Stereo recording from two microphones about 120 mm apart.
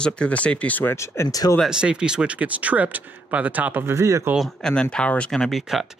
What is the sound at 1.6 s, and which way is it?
Speech, 5° right (ahead or behind).